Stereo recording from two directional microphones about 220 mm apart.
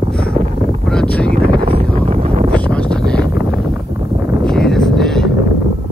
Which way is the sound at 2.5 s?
5° left (ahead or behind).